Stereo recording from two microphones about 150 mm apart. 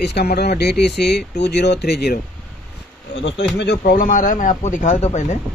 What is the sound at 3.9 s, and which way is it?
Speech, 70° left (ahead or behind).